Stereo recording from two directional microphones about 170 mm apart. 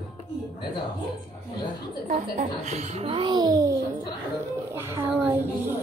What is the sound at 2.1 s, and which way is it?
A child's voice, 45° right (ahead or behind).